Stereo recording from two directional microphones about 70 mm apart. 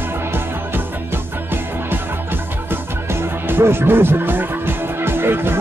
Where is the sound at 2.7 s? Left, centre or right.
Right.